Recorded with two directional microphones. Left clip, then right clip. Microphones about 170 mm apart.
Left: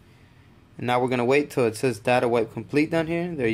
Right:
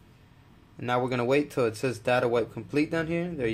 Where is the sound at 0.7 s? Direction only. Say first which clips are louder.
Left 4 dB; 30° left (ahead or behind).